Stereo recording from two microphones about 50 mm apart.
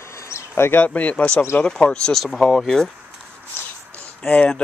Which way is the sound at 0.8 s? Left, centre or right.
Left.